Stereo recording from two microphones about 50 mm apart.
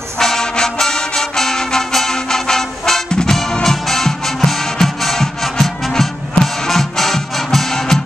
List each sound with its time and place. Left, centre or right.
0.2 s brass instrument: centre
3.1 s music: centre